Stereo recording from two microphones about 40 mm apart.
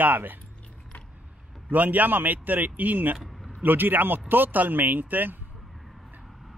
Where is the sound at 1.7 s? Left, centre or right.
Right.